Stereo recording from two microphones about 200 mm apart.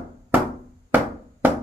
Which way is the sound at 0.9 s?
10° right (ahead or behind).